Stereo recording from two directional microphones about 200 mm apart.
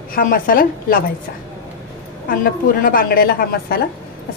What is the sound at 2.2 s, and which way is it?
A woman's voice, 45° left (ahead or behind).